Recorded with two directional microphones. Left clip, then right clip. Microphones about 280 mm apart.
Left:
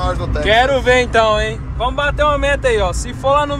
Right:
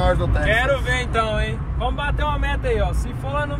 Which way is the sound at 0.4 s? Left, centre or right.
Left.